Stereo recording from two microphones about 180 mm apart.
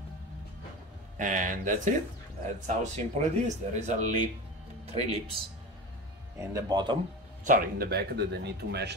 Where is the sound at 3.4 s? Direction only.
40° right (ahead or behind).